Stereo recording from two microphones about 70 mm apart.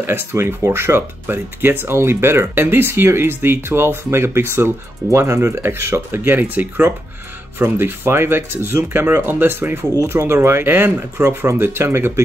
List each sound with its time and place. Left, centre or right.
0.0 s speech: right